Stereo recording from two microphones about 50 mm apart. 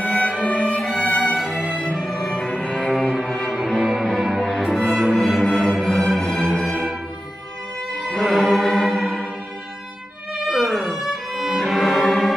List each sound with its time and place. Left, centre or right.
0.1 s violin: centre
0.4 s violin: left
1.0 s music: left
1.4 s music: centre
2.0 s music: centre
2.5 s cello: centre
2.9 s music: centre
3.8 s music: centre
8.2 s music: centre
10.5 s violin: centre